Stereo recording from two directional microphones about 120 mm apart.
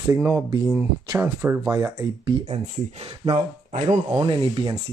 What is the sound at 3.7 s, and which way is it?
Speech, 70° right (ahead or behind).